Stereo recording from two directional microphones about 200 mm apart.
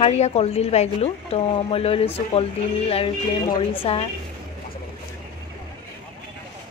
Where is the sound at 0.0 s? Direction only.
30° left (ahead or behind).